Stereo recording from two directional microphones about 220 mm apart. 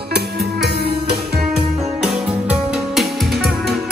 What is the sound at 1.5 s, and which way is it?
Music, centre (ahead or behind).